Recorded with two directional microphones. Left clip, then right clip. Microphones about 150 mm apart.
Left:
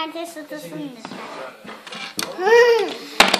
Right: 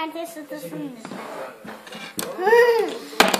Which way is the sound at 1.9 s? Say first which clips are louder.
Left 5 dB; 35° left (ahead or behind).